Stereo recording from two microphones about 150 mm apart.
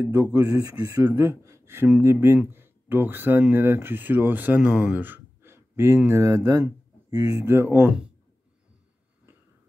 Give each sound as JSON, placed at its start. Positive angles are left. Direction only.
{"t": 0.3, "sound": "speech", "side_deg": -25}